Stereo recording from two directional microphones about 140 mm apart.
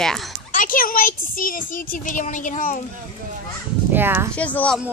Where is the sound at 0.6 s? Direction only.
80° left; by 2.8 s 65° left (ahead or behind).